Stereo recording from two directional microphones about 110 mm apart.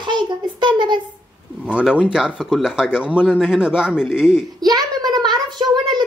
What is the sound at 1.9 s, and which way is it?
A child's voice, 5° right (ahead or behind).